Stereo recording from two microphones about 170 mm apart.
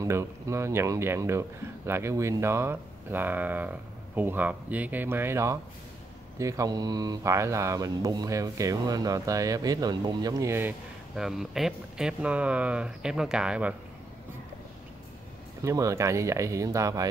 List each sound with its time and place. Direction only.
0.0 s speech: 15° right (ahead or behind)
11.1 s speech: centre (ahead or behind)
15.6 s speech: 20° right (ahead or behind)